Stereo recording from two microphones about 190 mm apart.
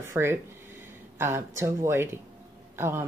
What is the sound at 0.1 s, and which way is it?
A woman's voice, 10° right (ahead or behind).